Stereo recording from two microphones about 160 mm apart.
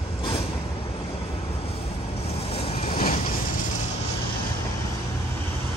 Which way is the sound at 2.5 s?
40° left (ahead or behind).